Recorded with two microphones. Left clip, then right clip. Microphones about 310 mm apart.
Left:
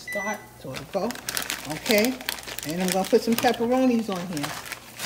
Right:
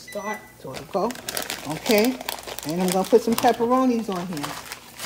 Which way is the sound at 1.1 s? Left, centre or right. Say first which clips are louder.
Even; centre.